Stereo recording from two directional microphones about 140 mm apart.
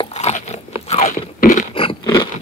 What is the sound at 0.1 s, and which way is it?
Biting, 55° left (ahead or behind).